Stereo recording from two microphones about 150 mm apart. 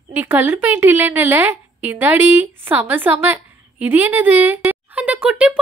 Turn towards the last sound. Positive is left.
turn(degrees=-10)  # may be behind; listen again after turning